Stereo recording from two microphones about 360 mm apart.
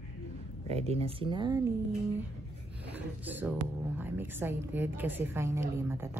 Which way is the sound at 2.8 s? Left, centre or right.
Centre.